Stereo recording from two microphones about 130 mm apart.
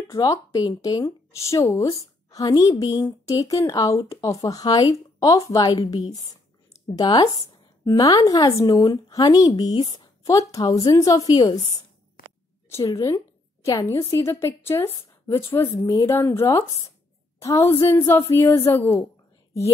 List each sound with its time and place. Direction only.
0.1 s a woman's voice: 25° left (ahead or behind)
7.0 s a woman's voice: 30° left (ahead or behind)
12.6 s a woman's voice: 25° left (ahead or behind)